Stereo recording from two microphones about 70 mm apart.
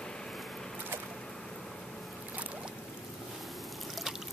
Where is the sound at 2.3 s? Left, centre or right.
Centre.